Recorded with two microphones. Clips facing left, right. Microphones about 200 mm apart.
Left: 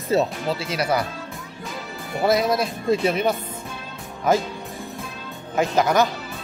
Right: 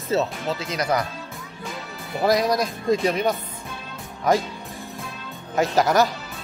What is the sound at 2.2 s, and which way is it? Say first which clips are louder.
Speech: even; centre (ahead or behind).